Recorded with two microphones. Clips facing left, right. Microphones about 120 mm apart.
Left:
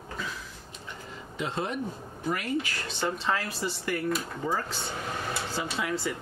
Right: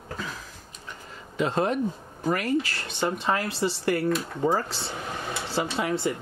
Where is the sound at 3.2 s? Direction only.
20° right (ahead or behind).